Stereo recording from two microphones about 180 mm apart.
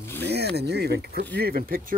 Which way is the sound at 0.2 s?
65° right (ahead or behind).